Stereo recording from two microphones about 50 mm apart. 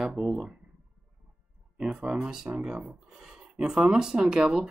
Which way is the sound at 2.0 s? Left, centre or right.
Centre.